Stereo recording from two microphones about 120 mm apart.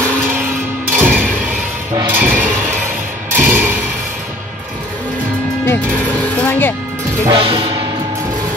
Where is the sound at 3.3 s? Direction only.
15° right (ahead or behind).